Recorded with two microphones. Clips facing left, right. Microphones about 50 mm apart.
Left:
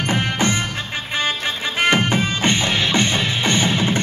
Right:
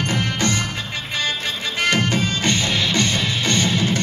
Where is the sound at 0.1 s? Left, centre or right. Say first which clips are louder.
Left 4 dB; left.